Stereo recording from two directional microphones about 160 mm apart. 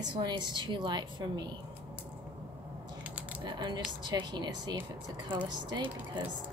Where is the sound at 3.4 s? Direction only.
25° right (ahead or behind).